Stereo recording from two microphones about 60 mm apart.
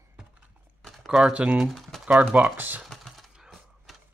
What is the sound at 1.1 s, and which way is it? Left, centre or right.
Speech, centre.